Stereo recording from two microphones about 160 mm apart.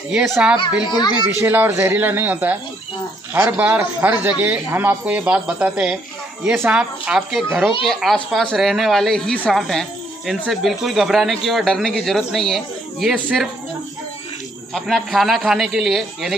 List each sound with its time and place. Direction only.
0.1 s speech: 5° right (ahead or behind)
0.8 s a child's voice: 30° left (ahead or behind)
1.4 s a man's voice: 10° right (ahead or behind)
14.7 s speech: centre (ahead or behind)